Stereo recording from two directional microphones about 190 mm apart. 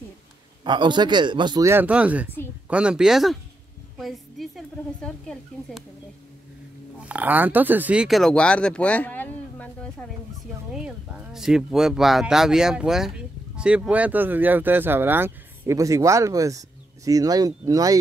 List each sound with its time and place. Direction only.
0.7 s speech: 25° right (ahead or behind); by 5.9 s centre (ahead or behind)
7.0 s speech: 10° right (ahead or behind)
10.7 s speech: 5° right (ahead or behind)